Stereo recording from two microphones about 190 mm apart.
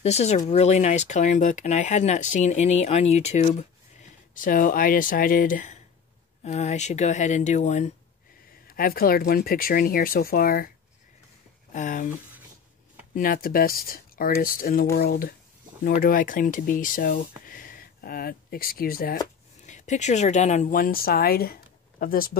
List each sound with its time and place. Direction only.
0.0 s speech: 35° left (ahead or behind)
4.4 s speech: 45° left (ahead or behind)
8.6 s speech: 50° left (ahead or behind)
11.7 s speech: 40° left (ahead or behind)
13.1 s speech: 45° left (ahead or behind)
19.6 s speech: 40° left (ahead or behind)